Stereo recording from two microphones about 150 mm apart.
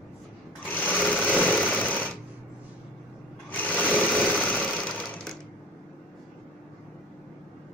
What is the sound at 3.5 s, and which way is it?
Sewing machine, 10° left (ahead or behind).